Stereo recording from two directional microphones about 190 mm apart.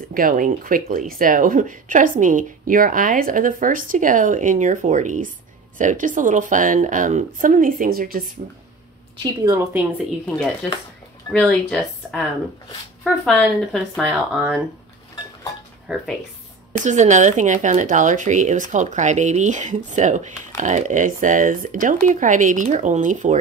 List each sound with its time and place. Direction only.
0.1 s speech: 45° right (ahead or behind)
9.2 s a woman's voice: 20° right (ahead or behind)
11.3 s speech: 5° left (ahead or behind)
15.9 s speech: centre (ahead or behind)
16.7 s speech: 40° right (ahead or behind)